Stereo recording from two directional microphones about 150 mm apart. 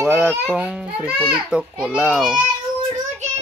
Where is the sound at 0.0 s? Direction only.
10° right (ahead or behind).